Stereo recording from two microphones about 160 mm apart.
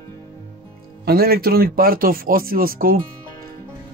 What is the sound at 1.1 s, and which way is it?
Speech, 75° right (ahead or behind).